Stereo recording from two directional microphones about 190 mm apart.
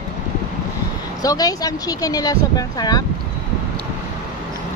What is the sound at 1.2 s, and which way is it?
Speech, 20° left (ahead or behind).